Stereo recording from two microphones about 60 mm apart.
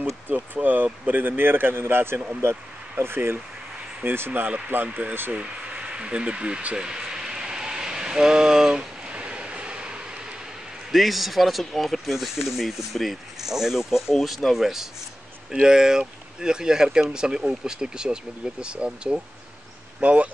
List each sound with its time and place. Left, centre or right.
0.3 s speech: right
5.3 s a sound: centre
10.9 s speech: centre; by 20.3 s right